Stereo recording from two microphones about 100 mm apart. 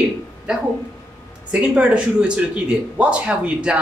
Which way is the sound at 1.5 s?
10° right (ahead or behind).